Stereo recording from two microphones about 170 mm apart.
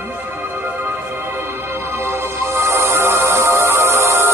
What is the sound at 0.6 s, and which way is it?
Music, 10° right (ahead or behind).